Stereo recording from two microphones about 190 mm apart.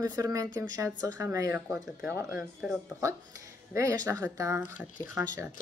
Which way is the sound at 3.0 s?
15° right (ahead or behind).